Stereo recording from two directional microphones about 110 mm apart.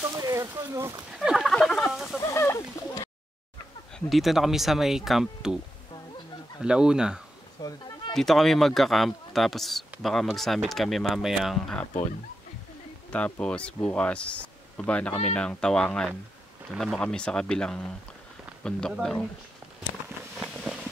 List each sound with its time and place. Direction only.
0.0 s speech: 25° right (ahead or behind)
1.1 s a sound: 5° right (ahead or behind)
2.2 s a sound: 25° left (ahead or behind)
4.1 s speech: centre (ahead or behind)
6.6 s speech: 5° right (ahead or behind)
7.6 s speech: 40° left (ahead or behind)
8.1 s speech: 5° left (ahead or behind)
13.1 s speech: 10° left (ahead or behind)
20.3 s a sound: 5° right (ahead or behind)